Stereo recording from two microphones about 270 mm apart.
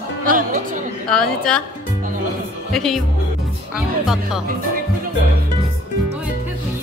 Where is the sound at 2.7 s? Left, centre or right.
Centre.